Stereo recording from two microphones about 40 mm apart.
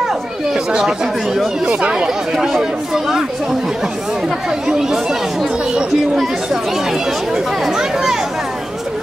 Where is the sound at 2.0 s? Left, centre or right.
Centre.